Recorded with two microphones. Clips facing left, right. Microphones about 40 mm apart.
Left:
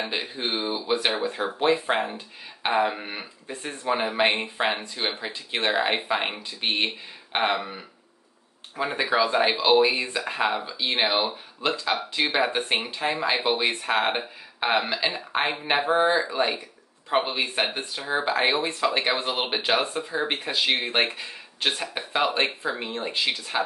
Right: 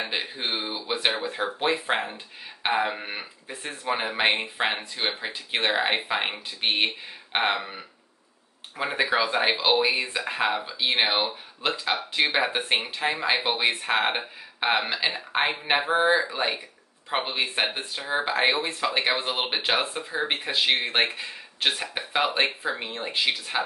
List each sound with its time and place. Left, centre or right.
0.0 s speech: centre
9.8 s speech: centre
10.6 s speech: centre